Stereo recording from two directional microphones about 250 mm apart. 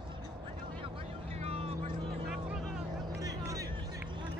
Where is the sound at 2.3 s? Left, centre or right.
Centre.